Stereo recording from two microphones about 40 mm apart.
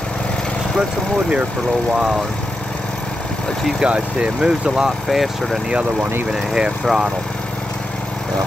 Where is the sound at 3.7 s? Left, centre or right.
Right.